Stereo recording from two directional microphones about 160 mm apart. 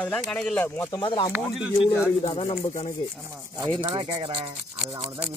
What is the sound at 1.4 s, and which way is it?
Speech, centre (ahead or behind).